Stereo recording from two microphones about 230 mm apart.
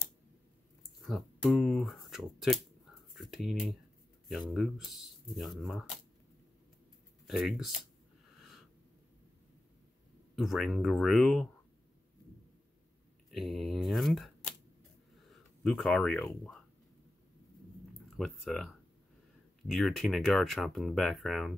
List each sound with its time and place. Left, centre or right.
1.0 s speech: centre
7.2 s speech: centre
8.4 s a sound: centre
10.3 s speech: centre
13.3 s speech: centre
18.1 s speech: centre